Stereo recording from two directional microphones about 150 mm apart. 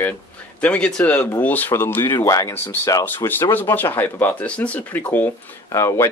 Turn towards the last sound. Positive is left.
turn(degrees=20)  # may be behind; listen again after turning